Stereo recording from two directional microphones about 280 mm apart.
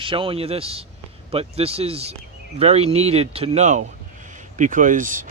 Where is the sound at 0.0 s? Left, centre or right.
Centre.